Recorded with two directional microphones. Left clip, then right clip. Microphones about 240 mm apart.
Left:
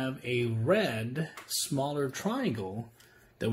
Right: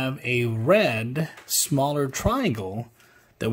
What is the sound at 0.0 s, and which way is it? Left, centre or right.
Speech, right.